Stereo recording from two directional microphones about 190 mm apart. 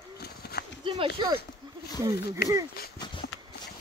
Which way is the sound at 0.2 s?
55° left (ahead or behind).